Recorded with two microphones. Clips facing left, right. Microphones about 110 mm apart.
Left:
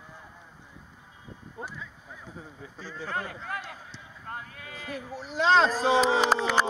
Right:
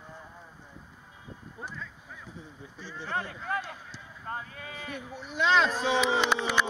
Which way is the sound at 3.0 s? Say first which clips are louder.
Even; 45° left (ahead or behind).